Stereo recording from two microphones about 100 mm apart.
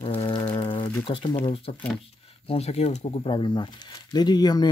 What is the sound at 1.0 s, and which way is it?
Speech, 55° left (ahead or behind).